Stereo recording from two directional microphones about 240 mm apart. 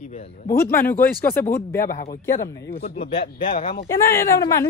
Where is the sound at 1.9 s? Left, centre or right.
Left.